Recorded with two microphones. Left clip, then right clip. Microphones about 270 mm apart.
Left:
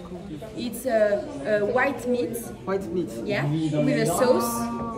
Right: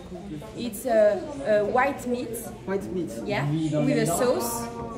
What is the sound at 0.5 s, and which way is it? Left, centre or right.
Speech, centre.